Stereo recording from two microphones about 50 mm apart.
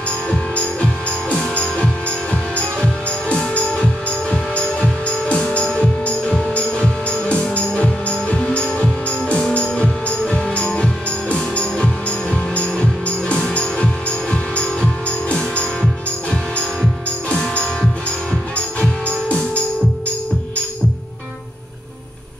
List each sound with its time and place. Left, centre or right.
0.3 s music: centre
18.8 s music: left